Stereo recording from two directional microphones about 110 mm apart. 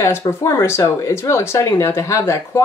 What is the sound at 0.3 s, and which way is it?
Speech, 25° left (ahead or behind).